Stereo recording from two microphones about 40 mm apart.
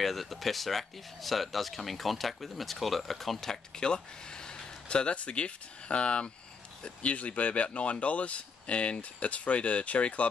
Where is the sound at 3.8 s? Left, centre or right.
Left.